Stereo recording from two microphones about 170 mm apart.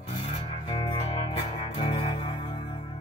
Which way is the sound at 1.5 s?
35° left (ahead or behind).